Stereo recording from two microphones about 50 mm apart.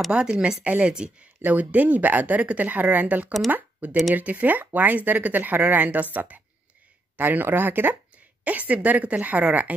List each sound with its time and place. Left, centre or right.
0.1 s speech: centre
1.4 s speech: right
7.2 s speech: right
8.5 s speech: right